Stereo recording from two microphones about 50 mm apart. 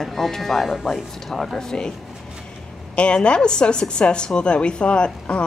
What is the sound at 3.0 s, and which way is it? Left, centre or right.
A woman's voice, left.